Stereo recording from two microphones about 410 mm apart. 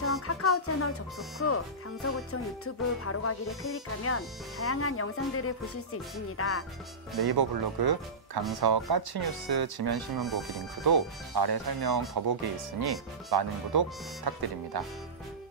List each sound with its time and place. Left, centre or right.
0.0 s music: left
1.4 s speech: left
7.2 s speech: right